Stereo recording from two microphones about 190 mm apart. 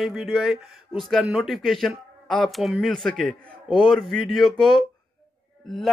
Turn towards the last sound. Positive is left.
turn(degrees=0)  # may be behind; listen again after turning